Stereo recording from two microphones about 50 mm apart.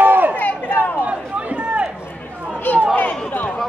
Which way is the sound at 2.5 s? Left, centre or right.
Left.